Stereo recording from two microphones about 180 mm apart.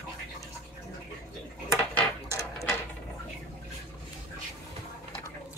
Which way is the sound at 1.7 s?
15° left (ahead or behind).